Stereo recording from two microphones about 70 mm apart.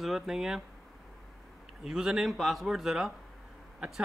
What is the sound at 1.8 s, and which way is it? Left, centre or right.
Speech, centre.